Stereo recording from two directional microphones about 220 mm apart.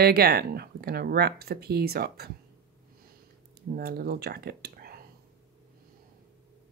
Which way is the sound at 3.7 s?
45° right (ahead or behind).